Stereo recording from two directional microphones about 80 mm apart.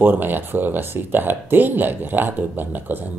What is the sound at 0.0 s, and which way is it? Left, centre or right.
Speech, right.